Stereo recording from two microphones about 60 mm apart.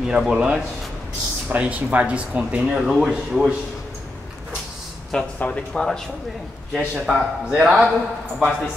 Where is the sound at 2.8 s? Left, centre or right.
Centre.